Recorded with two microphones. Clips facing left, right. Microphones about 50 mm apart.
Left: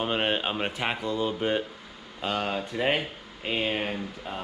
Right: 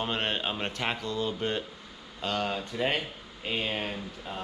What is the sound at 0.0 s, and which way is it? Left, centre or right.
A man's voice, centre.